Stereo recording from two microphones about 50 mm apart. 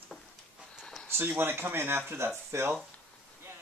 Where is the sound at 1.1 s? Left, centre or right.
Right.